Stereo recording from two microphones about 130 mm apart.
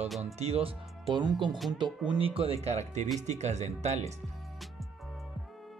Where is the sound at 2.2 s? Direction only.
45° right (ahead or behind).